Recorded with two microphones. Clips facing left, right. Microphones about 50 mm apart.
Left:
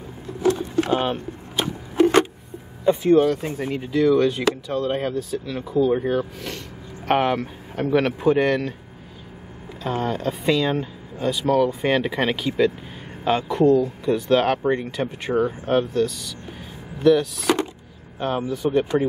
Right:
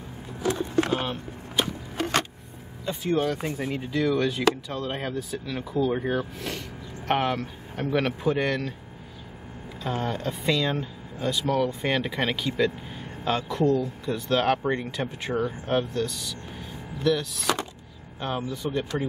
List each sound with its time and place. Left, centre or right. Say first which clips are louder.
0.8 s speech: left 6 dB; centre
2.0 s a sound: left 10 dB; centre
3.0 s speech: left 6 dB; centre
7.1 s speech: left 5 dB; centre
9.8 s speech: left 5 dB; centre